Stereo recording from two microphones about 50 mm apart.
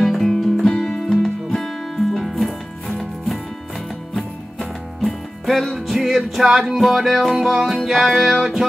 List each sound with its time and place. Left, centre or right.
0.0 s music: centre